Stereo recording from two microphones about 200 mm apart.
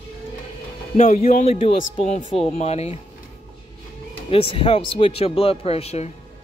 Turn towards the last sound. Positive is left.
turn(degrees=30)  # may be behind; listen again after turning